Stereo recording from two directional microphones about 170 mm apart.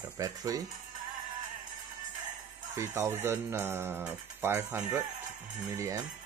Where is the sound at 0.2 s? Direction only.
20° right (ahead or behind).